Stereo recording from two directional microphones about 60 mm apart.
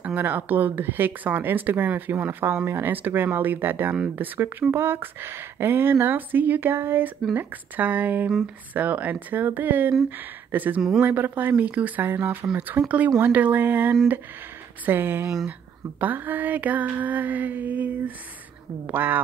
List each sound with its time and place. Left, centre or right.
0.0 s speech: right
7.3 s mantra: right
9.3 s speech: right
10.0 s mantra: right
12.0 s speech: right
12.8 s mantra: right
13.2 s speech: right
16.0 s mantra: right
18.9 s speech: right